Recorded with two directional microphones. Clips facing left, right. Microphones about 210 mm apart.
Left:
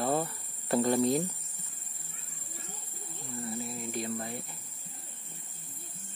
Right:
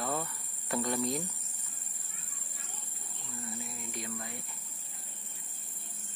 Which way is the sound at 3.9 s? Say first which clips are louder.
Left 6 dB; 35° left (ahead or behind).